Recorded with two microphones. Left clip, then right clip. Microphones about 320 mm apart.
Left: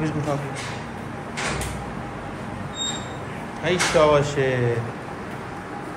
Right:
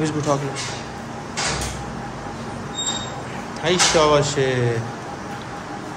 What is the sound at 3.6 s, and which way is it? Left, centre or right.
Speech, centre.